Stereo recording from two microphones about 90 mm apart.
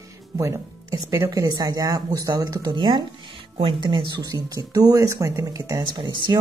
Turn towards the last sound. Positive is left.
turn(degrees=-60)  # may be behind; listen again after turning